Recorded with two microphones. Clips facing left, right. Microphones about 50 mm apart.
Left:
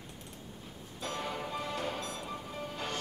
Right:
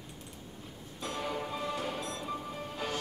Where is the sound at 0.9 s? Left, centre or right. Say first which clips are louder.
Right 1 dB; centre.